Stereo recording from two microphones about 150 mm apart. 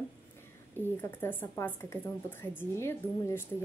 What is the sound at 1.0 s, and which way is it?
Speech, 15° left (ahead or behind).